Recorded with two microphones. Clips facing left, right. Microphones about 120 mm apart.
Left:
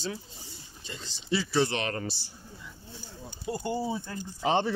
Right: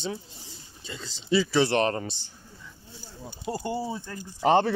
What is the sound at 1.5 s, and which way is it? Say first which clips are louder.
Speech: right 1 dB; 80° right.